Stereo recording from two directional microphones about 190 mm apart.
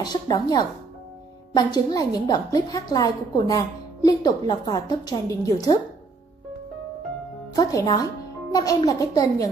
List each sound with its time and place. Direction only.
0.0 s a woman's voice: 20° left (ahead or behind)
7.5 s a woman's voice: 20° left (ahead or behind)